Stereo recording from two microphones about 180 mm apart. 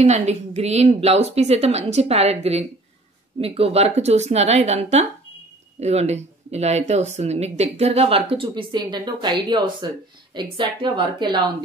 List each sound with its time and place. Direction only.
0.0 s speech: 40° right (ahead or behind)